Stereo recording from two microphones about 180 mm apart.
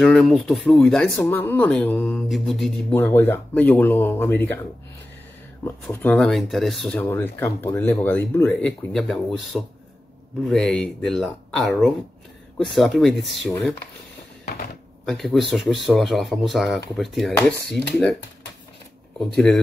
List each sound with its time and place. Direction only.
0.0 s speech: centre (ahead or behind)
3.0 s speech: 10° left (ahead or behind)
5.9 s speech: 5° left (ahead or behind)
15.0 s speech: centre (ahead or behind)
19.3 s speech: 5° left (ahead or behind)